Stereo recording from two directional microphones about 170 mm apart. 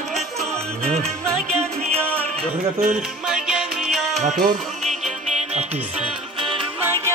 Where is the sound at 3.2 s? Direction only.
5° right (ahead or behind).